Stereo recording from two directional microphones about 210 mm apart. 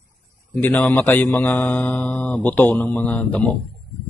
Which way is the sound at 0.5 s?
10° left (ahead or behind).